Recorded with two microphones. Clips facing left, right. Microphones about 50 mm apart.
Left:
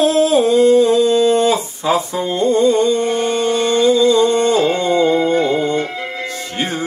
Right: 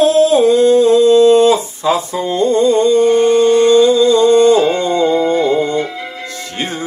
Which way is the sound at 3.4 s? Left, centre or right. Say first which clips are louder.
Right 7 dB; right.